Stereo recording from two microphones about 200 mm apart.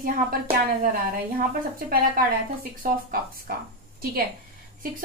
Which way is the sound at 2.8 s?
45° right (ahead or behind).